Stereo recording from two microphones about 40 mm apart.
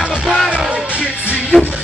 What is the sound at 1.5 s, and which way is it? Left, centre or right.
Music, right.